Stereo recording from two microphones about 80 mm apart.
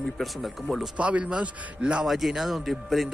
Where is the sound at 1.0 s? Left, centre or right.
Centre.